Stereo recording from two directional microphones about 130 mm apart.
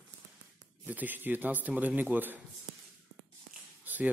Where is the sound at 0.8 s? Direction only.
15° right (ahead or behind).